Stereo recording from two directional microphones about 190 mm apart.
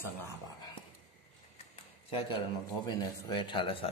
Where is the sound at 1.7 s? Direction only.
25° left (ahead or behind).